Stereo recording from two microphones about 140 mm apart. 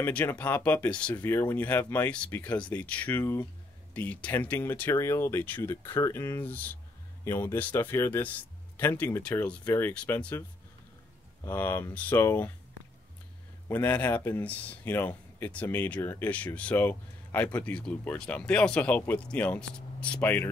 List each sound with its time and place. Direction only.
0.0 s speech: 15° left (ahead or behind)
11.4 s speech: 15° left (ahead or behind)
13.7 s speech: 15° left (ahead or behind)